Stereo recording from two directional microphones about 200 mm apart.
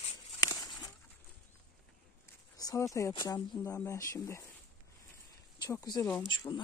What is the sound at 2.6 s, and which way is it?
Speech, 15° left (ahead or behind).